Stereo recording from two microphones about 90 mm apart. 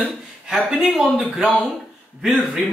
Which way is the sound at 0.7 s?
5° right (ahead or behind).